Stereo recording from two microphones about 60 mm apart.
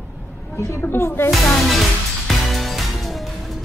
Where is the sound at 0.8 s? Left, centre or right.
Left.